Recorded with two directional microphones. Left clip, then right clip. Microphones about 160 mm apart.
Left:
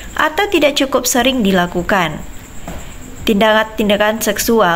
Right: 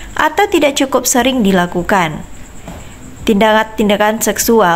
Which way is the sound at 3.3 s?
15° right (ahead or behind).